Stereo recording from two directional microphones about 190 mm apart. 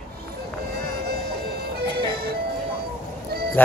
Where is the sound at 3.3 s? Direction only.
55° right (ahead or behind).